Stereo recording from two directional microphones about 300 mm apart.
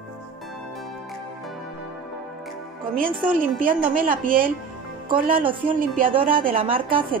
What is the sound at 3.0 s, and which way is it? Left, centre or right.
A woman's voice, right.